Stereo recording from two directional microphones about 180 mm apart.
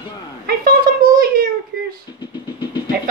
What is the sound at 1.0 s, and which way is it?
Cat, 50° right (ahead or behind).